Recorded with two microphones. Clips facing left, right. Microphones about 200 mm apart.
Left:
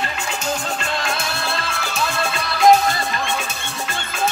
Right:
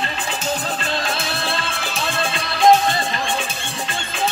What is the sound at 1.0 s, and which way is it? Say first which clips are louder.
Music: even; 30° right (ahead or behind).